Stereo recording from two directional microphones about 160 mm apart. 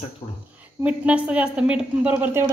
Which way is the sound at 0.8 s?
10° right (ahead or behind).